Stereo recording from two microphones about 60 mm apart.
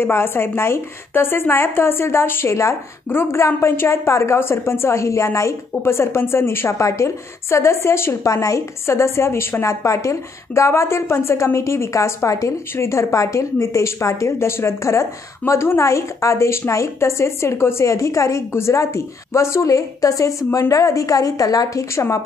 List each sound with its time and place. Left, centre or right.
0.0 s a woman's voice: left
6.8 s a woman's voice: left
8.3 s a woman's voice: left